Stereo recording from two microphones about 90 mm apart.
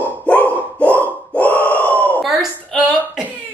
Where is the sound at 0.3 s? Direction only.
15° left (ahead or behind).